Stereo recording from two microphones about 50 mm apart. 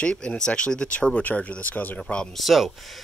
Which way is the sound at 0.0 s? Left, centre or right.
Left.